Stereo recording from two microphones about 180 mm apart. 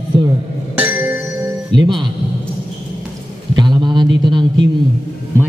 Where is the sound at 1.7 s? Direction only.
25° right (ahead or behind).